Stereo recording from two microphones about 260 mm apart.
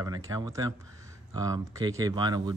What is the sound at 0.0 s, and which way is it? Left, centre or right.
Speech, centre.